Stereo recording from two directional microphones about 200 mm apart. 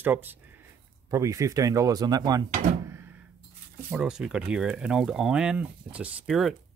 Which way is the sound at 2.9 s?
10° right (ahead or behind).